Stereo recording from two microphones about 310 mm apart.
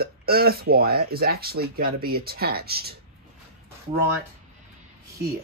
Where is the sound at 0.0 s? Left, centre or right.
Right.